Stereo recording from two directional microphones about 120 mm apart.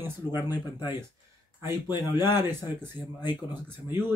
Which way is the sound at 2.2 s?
20° right (ahead or behind).